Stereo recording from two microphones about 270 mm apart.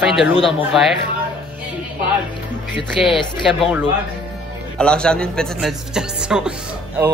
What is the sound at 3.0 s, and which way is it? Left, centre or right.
Speech, centre.